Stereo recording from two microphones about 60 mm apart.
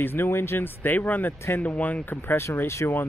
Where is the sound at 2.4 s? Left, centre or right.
Left.